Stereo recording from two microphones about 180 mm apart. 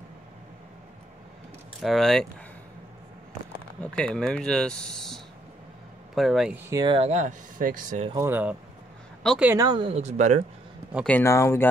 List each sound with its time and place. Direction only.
1.8 s speech: centre (ahead or behind)
3.8 s speech: 5° left (ahead or behind)
6.7 s speech: 25° right (ahead or behind); by 8.1 s 45° right (ahead or behind)
8.2 s speech: 10° right (ahead or behind)
9.7 s speech: 30° right (ahead or behind)
11.1 s speech: 15° left (ahead or behind)